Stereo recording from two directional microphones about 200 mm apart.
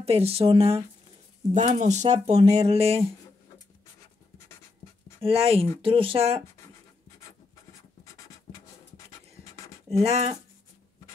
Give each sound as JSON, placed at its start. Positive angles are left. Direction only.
{"t": 0.0, "sound": "speech", "side_deg": -30}
{"t": 5.2, "sound": "speech", "side_deg": -30}
{"t": 8.0, "sound": "a sound", "side_deg": 15}
{"t": 9.9, "sound": "speech", "side_deg": -30}